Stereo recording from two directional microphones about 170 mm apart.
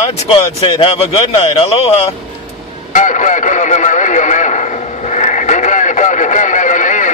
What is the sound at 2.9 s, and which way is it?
Radio, 45° left (ahead or behind).